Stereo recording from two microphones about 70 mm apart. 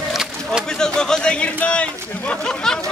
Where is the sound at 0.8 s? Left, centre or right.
Centre.